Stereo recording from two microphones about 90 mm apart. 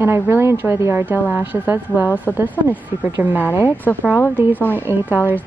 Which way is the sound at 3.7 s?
20° left (ahead or behind).